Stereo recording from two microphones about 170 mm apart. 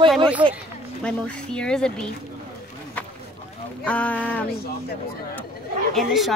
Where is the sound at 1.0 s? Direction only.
5° left (ahead or behind).